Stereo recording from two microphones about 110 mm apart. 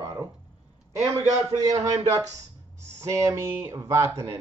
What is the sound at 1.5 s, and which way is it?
Speech, 30° right (ahead or behind).